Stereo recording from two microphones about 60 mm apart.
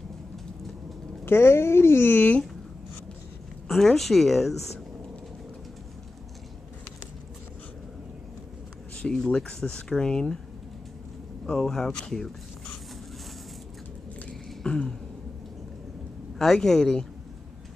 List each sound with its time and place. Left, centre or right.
1.2 s speech: left
3.6 s a woman's voice: centre
8.9 s speech: centre
11.4 s speech: centre
14.5 s a sound: centre
16.3 s speech: centre